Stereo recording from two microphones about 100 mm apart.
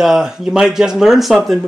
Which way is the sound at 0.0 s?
5° right (ahead or behind).